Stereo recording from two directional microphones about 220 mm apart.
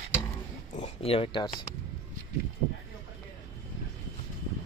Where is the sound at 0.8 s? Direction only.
25° left (ahead or behind).